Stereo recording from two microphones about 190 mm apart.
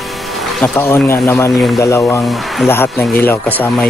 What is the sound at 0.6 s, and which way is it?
Speech, 15° left (ahead or behind).